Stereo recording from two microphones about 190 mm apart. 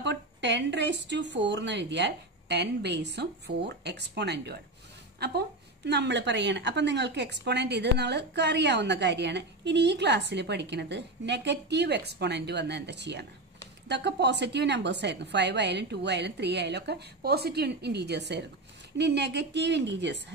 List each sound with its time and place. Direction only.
0.0 s a woman's voice: 65° right (ahead or behind)